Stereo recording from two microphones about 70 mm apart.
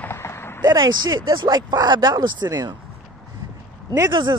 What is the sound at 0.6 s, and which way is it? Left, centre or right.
Speech, right.